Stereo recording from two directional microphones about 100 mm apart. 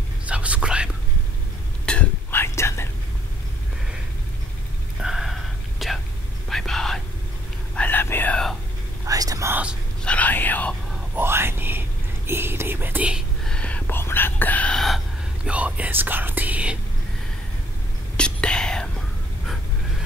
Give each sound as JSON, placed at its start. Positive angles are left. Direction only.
{"t": 0.3, "sound": "whispering", "side_deg": -10}
{"t": 1.9, "sound": "whispering", "side_deg": 15}
{"t": 2.4, "sound": "whispering", "side_deg": 25}
{"t": 5.0, "sound": "whispering", "side_deg": -5}
{"t": 7.7, "sound": "whispering", "side_deg": 15}
{"t": 9.0, "sound": "whispering", "side_deg": -35}
{"t": 9.5, "sound": "whispering", "side_deg": -15}
{"t": 10.0, "sound": "whispering", "side_deg": 15}
{"t": 11.1, "sound": "a sound", "side_deg": -25}
{"t": 12.3, "sound": "whispering", "side_deg": -25}
{"t": 13.5, "sound": "whispering", "side_deg": 10}
{"t": 14.7, "sound": "gasp", "side_deg": 0}
{"t": 15.4, "sound": "whispering", "side_deg": -15}
{"t": 18.1, "sound": "whispering", "side_deg": 10}